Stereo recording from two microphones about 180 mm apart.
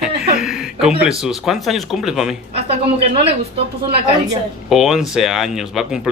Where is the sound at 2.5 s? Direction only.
35° right (ahead or behind).